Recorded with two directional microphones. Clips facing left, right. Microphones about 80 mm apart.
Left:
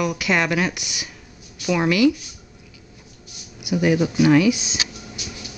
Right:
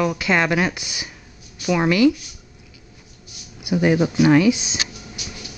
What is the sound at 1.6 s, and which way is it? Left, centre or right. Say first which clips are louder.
Speech: right 1 dB; centre.